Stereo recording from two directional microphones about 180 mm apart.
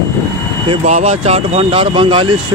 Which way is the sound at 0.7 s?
40° right (ahead or behind).